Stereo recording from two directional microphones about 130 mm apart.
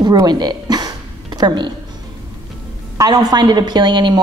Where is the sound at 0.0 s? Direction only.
35° right (ahead or behind).